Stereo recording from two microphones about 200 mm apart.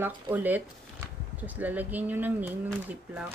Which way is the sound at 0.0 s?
10° right (ahead or behind).